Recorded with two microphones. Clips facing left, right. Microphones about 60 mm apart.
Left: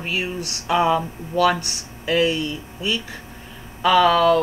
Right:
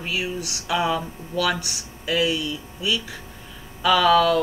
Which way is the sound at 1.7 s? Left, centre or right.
Left.